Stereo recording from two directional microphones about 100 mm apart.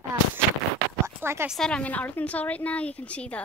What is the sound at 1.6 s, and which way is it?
A woman's voice, 10° left (ahead or behind).